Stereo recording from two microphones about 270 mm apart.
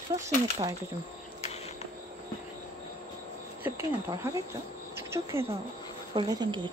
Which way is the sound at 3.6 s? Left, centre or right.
Centre.